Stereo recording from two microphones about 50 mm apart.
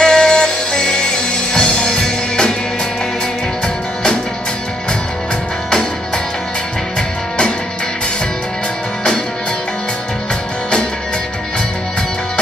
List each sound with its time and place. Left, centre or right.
0.0 s music: centre
3.6 s music: centre